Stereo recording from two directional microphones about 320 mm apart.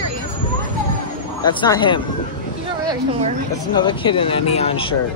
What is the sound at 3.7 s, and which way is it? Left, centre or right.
Speech, centre.